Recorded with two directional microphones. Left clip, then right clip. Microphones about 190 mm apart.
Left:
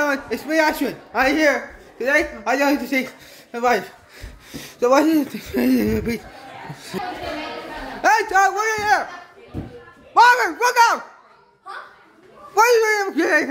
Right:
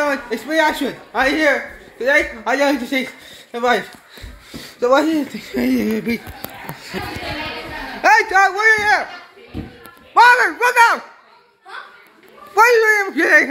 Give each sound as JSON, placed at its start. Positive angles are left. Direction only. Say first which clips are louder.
{"t": 0.0, "sound": "speech", "louder": "right 2 dB", "side_deg": 10}
{"t": 4.5, "sound": "speech", "louder": "right 2 dB", "side_deg": 20}
{"t": 8.0, "sound": "a man's voice", "louder": "right 3 dB", "side_deg": 0}
{"t": 10.1, "sound": "speech", "louder": "right 3 dB", "side_deg": 5}
{"t": 12.5, "sound": "speech", "louder": "right 3 dB", "side_deg": 5}